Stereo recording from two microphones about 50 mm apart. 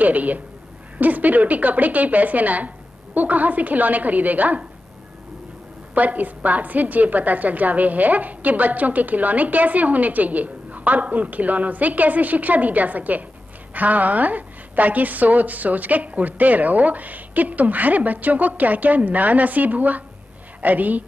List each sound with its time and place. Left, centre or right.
0.0 s a woman's voice: right
5.9 s a woman's voice: right